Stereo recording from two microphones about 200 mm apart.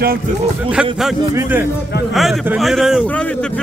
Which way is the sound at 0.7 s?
5° right (ahead or behind).